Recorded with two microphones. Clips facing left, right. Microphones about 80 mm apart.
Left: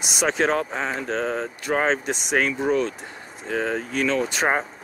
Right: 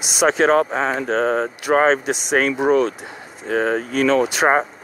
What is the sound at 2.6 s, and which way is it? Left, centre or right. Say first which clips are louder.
Speech: right 6 dB; right.